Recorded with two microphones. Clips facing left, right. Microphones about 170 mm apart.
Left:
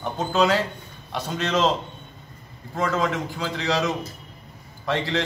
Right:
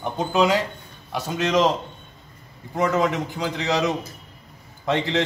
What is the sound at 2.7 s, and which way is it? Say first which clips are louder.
A man's voice: right 3 dB; 20° right (ahead or behind).